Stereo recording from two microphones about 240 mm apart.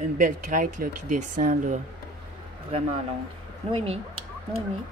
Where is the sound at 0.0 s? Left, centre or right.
Right.